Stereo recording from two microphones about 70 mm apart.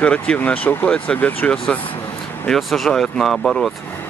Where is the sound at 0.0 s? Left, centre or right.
Centre.